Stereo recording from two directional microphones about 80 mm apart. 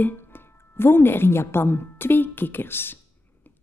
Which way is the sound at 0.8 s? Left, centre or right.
Left.